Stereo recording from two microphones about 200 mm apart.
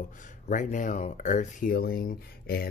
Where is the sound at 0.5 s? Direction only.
40° left (ahead or behind).